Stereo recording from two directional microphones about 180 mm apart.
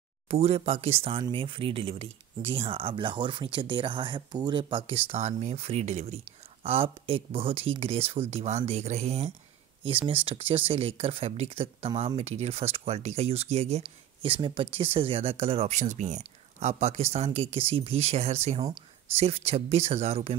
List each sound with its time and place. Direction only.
0.3 s speech: 35° right (ahead or behind)